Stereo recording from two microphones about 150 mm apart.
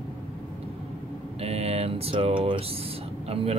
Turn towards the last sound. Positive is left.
turn(degrees=-40)  # may be behind; listen again after turning